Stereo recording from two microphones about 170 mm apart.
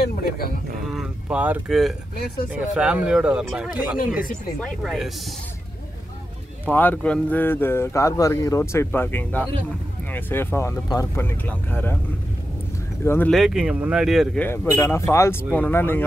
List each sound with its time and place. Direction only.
0.0 s speech: 65° left (ahead or behind)
0.9 s speech: 10° right (ahead or behind)
6.6 s speech: 10° left (ahead or behind)
13.0 s speech: 15° left (ahead or behind)
13.3 s speech: centre (ahead or behind)
14.4 s speech: 10° left (ahead or behind)